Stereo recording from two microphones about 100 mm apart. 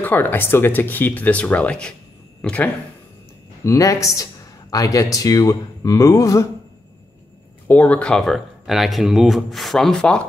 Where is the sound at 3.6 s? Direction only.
30° left (ahead or behind).